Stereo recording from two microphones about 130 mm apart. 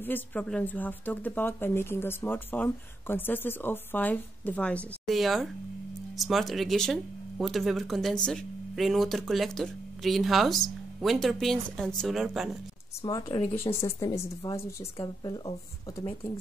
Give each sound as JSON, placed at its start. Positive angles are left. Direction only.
{"t": 0.0, "sound": "speech", "side_deg": 15}
{"t": 13.0, "sound": "speech", "side_deg": 35}
{"t": 13.7, "sound": "speech", "side_deg": 20}